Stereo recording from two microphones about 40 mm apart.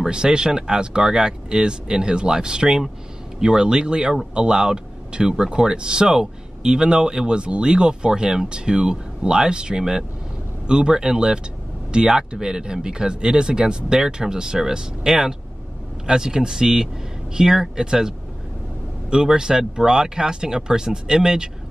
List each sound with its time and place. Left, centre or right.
0.0 s speech: centre